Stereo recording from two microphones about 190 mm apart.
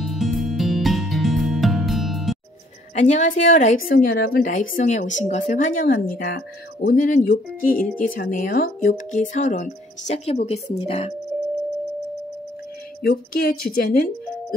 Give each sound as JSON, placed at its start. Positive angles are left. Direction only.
{"t": 0.0, "sound": "music", "side_deg": 0}
{"t": 2.9, "sound": "a woman's voice", "side_deg": 40}
{"t": 13.0, "sound": "speech", "side_deg": 50}